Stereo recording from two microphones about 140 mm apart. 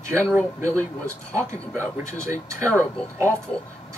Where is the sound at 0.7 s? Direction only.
20° right (ahead or behind).